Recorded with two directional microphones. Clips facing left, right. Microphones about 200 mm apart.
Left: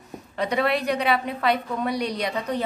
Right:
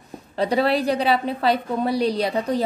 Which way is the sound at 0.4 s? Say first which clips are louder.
Right 4 dB; 30° right (ahead or behind).